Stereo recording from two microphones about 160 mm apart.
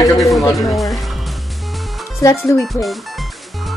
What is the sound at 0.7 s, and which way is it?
Speech, centre (ahead or behind).